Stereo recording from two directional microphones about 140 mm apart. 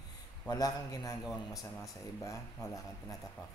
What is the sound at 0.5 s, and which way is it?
A man's voice, 25° left (ahead or behind).